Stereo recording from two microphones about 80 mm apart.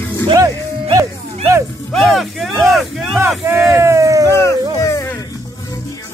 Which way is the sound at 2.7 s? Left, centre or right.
Centre.